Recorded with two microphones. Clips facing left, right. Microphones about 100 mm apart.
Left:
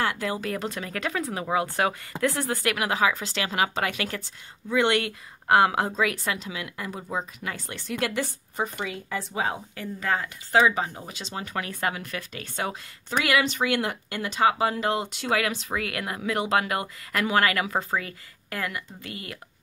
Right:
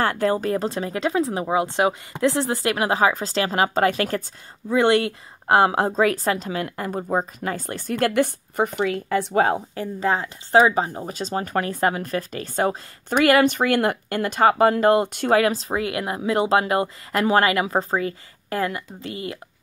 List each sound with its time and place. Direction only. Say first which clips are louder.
0.0 s speech: right 7 dB; 45° right (ahead or behind)
0.5 s speech: right 7 dB; 30° right (ahead or behind); by 9.6 s 55° right (ahead or behind)
9.8 s speech: right 5 dB; 30° right (ahead or behind)
13.1 s speech: right 8 dB; 50° right (ahead or behind)
15.3 s speech: right 7 dB; 35° right (ahead or behind)